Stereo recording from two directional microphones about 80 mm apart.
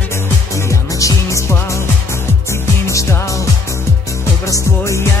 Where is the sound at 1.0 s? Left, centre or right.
Left.